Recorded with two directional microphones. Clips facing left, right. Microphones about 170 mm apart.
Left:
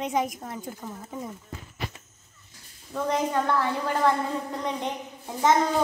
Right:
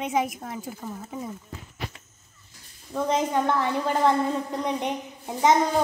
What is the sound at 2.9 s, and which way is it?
A woman's voice, 20° right (ahead or behind).